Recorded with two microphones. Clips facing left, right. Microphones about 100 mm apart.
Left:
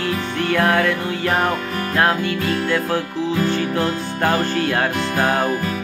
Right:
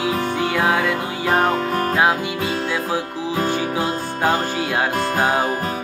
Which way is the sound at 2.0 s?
10° right (ahead or behind).